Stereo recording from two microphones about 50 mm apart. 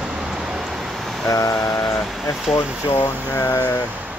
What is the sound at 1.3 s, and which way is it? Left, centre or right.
Vehicle, left.